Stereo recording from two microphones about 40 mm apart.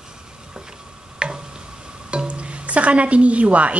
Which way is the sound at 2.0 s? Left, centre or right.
Right.